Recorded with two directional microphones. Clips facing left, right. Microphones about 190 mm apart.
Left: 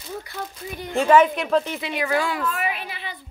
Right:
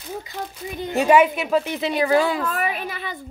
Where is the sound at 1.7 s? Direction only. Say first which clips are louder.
Right 5 dB; 30° right (ahead or behind).